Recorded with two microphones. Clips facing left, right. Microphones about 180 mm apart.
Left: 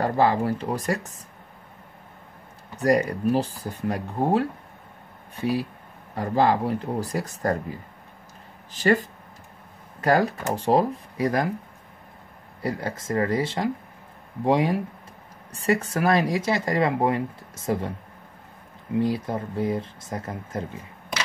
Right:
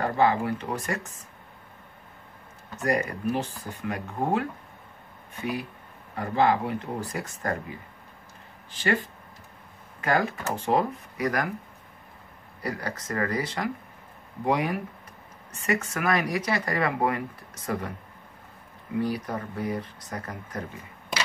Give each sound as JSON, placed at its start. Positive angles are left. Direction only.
{"t": 0.0, "sound": "speech", "side_deg": 35}
{"t": 2.8, "sound": "speech", "side_deg": 35}
{"t": 8.7, "sound": "speech", "side_deg": 40}
{"t": 10.0, "sound": "speech", "side_deg": 35}
{"t": 12.6, "sound": "speech", "side_deg": 25}
{"t": 18.9, "sound": "speech", "side_deg": 25}